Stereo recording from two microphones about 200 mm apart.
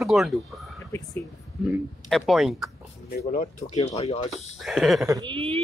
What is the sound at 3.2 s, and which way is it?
Speech, 40° left (ahead or behind).